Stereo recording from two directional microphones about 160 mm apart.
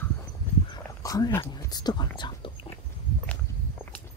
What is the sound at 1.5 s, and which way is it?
Speech, 25° left (ahead or behind).